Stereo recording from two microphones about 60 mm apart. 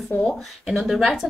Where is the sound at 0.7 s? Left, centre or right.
Centre.